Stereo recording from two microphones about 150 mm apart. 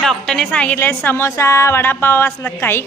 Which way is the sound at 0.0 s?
5° left (ahead or behind).